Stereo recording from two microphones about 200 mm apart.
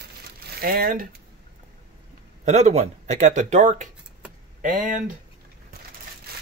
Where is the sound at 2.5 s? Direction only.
35° right (ahead or behind).